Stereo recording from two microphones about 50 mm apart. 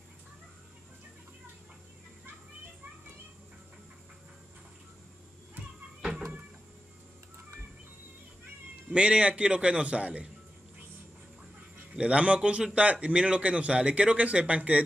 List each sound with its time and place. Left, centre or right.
8.9 s speech: right
11.9 s speech: right